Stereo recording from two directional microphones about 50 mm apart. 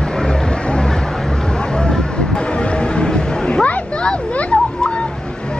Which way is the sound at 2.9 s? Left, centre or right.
Centre.